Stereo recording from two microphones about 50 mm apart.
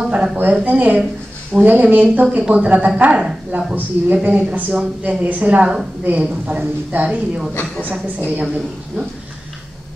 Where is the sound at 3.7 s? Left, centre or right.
Right.